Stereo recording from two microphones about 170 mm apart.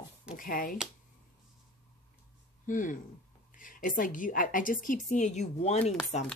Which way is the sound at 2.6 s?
50° left (ahead or behind).